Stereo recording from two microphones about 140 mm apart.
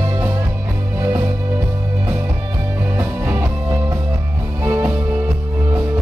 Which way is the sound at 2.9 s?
10° right (ahead or behind).